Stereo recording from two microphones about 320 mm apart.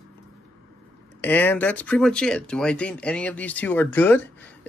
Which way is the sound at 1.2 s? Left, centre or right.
Centre.